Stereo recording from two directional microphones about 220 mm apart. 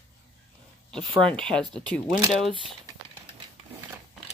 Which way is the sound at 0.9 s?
5° left (ahead or behind).